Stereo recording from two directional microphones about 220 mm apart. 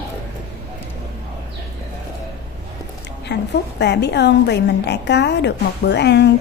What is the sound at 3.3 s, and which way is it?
A woman's voice, 50° left (ahead or behind).